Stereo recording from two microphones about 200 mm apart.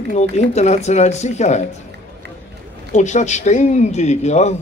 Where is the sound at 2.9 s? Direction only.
35° left (ahead or behind).